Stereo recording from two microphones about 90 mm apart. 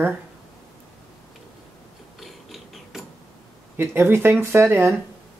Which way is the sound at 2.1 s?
Centre (ahead or behind).